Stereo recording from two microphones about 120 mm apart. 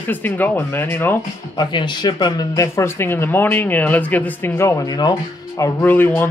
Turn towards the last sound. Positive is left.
turn(degrees=15)  # may be behind; listen again after turning